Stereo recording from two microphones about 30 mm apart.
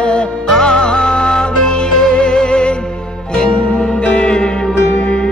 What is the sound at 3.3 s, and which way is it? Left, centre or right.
Music, centre.